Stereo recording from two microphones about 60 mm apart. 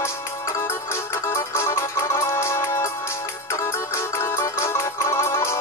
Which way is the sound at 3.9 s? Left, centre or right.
Left.